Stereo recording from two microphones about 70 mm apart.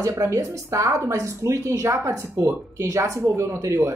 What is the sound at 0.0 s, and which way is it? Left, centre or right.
Speech, right.